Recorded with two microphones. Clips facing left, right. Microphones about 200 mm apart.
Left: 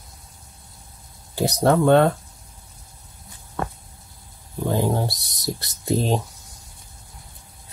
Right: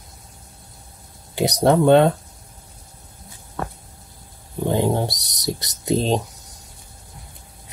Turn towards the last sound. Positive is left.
turn(degrees=-20)  # may be behind; listen again after turning